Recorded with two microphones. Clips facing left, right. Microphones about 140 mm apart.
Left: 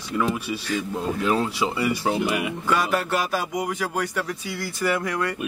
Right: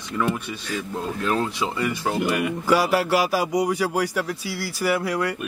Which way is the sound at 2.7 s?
10° right (ahead or behind).